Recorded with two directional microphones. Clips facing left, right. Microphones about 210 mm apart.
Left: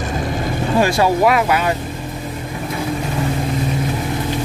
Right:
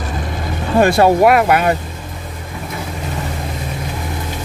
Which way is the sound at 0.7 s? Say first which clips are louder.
Right 5 dB; 55° right (ahead or behind).